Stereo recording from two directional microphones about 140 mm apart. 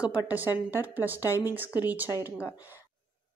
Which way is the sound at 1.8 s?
10° right (ahead or behind).